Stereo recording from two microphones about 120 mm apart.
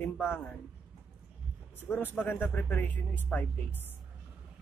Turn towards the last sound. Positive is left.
turn(degrees=15)  # may be behind; listen again after turning